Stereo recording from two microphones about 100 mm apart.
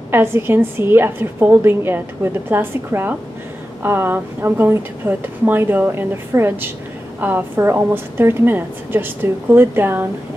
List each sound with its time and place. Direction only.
0.1 s a woman's voice: 25° right (ahead or behind)